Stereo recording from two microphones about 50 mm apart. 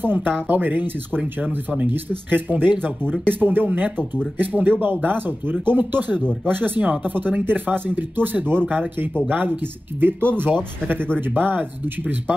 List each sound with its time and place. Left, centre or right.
0.0 s speech: right